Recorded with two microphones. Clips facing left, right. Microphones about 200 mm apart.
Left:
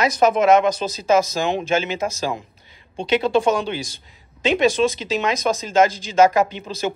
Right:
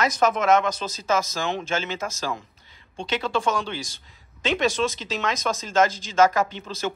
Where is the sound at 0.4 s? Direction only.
15° left (ahead or behind).